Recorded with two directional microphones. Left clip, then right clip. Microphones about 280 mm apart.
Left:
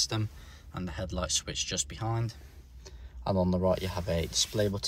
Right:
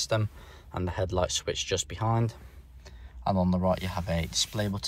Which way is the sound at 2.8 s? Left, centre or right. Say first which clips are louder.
Right 5 dB; centre.